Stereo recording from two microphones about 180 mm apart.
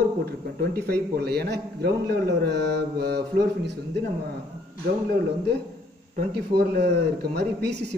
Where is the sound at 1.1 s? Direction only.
65° right (ahead or behind).